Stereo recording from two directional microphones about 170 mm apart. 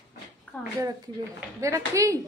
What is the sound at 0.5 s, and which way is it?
Speech, 10° left (ahead or behind).